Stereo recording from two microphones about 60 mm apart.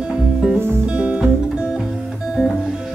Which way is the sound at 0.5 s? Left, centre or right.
Right.